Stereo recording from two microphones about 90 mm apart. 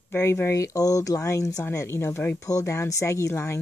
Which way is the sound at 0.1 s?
25° left (ahead or behind).